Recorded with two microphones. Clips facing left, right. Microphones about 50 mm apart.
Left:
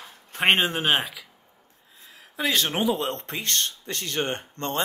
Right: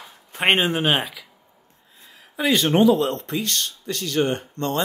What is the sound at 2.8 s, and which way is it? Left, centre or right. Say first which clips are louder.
Speech: right 10 dB; centre.